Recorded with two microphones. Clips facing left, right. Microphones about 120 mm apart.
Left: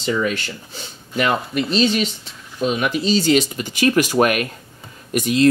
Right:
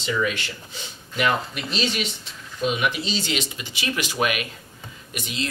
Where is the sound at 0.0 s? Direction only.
40° left (ahead or behind).